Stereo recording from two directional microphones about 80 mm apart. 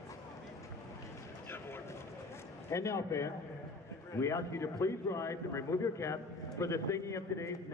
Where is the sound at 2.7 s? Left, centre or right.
Left.